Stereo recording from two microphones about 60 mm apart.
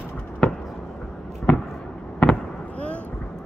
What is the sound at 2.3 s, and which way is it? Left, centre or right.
Fireworks, left.